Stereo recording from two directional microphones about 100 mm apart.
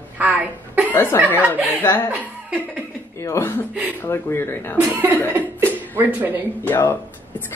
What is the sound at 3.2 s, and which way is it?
A woman's voice, 30° left (ahead or behind).